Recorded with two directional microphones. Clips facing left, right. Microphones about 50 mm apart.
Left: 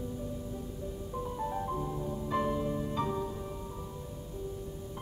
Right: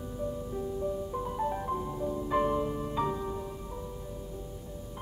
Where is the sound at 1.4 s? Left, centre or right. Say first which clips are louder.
Right 2 dB; centre.